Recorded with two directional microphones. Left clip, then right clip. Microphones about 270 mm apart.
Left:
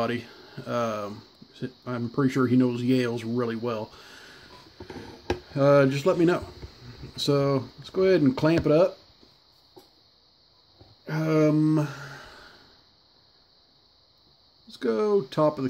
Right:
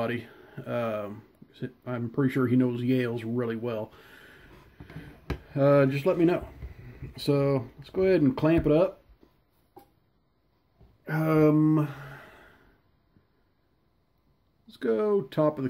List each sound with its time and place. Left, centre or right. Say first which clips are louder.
0.0 s speech: left 3 dB; centre
5.5 s speech: left 2 dB; centre
11.1 s speech: even; centre
14.7 s speech: left 2 dB; centre